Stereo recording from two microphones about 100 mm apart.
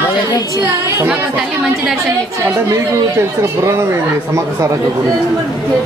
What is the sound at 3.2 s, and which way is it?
Speech, 25° right (ahead or behind).